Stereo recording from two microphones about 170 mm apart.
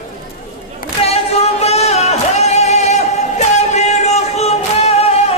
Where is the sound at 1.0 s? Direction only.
35° left (ahead or behind).